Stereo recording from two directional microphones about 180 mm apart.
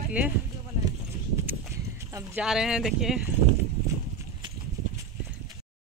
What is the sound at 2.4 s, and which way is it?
Speech, centre (ahead or behind).